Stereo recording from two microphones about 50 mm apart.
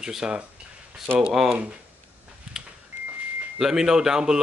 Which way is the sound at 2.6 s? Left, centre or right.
Centre.